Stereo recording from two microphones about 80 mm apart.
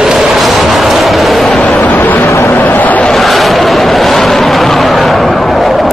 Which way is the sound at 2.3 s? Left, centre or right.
Left.